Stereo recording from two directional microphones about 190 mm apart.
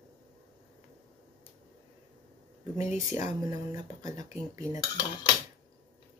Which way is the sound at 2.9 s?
15° right (ahead or behind).